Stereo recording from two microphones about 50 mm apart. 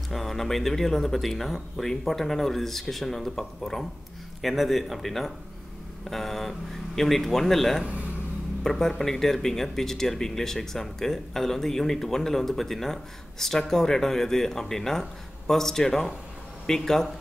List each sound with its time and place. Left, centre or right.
0.1 s speech: centre